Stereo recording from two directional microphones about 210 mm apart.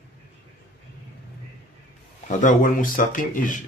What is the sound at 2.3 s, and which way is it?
Speech, 35° left (ahead or behind).